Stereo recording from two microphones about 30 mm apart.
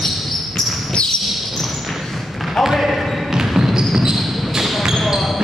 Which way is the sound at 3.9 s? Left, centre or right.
Centre.